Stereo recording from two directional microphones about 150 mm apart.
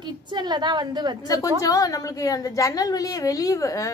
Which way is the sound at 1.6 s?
25° left (ahead or behind).